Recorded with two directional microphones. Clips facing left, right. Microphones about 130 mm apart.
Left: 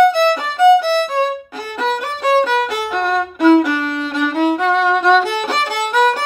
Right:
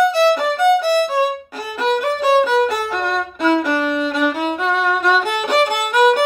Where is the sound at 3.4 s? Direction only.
10° left (ahead or behind).